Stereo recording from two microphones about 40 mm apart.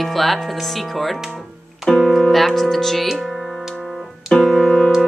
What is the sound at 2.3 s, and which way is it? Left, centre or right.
Speech, centre.